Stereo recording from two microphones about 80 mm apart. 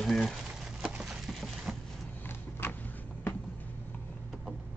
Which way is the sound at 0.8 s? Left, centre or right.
Centre.